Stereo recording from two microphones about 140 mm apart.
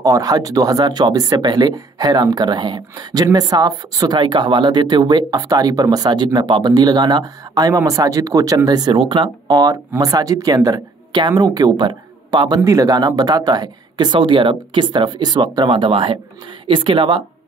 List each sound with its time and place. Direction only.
0.0 s speech: 25° right (ahead or behind)